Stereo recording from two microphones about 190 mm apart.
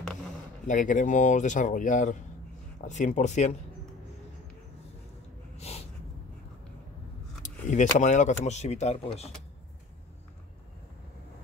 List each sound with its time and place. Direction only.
0.7 s speech: 45° left (ahead or behind)
5.6 s a sound: 35° left (ahead or behind)
7.7 s speech: 40° left (ahead or behind)